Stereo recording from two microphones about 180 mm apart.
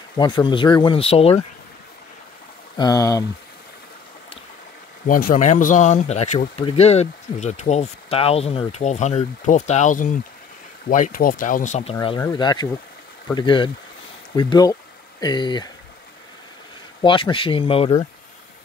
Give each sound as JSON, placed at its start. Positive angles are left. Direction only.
{"t": 0.2, "sound": "speech", "side_deg": 25}
{"t": 2.8, "sound": "speech", "side_deg": 20}
{"t": 5.0, "sound": "speech", "side_deg": 50}
{"t": 17.0, "sound": "speech", "side_deg": 30}